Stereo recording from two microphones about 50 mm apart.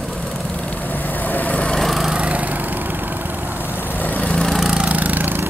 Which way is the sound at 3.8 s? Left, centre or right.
Left.